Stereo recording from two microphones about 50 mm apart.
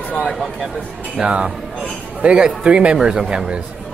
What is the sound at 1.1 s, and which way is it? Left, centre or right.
A man's voice, centre.